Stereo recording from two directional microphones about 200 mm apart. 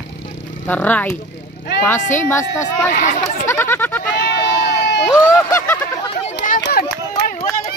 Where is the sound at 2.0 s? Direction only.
40° left (ahead or behind).